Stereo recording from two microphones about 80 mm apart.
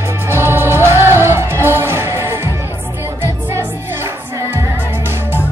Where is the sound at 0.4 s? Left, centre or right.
Right.